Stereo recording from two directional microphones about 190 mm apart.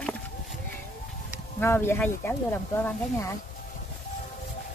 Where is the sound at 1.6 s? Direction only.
10° left (ahead or behind).